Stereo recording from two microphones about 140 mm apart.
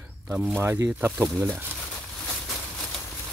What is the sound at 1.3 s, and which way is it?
Speech, 5° right (ahead or behind).